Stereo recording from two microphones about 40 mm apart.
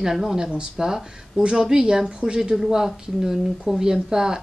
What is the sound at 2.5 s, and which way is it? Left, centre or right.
Speech, centre.